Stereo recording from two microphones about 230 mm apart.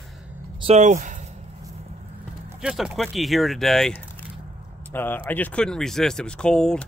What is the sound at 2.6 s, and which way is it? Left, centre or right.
Speech, centre.